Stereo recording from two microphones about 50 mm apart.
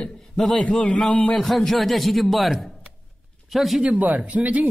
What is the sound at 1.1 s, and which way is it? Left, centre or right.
Speech, left.